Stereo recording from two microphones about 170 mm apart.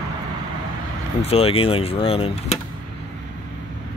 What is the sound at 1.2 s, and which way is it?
Speech, 35° left (ahead or behind).